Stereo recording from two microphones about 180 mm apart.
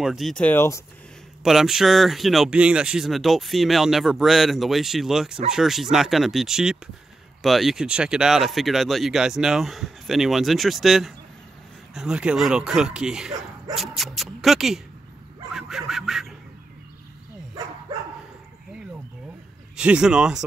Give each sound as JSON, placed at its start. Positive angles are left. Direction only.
{"t": 0.0, "sound": "speech", "side_deg": 0}
{"t": 1.4, "sound": "speech", "side_deg": 0}
{"t": 19.8, "sound": "speech", "side_deg": -5}